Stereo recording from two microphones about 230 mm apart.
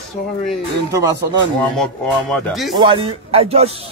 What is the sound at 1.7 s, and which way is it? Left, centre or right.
Speech, centre.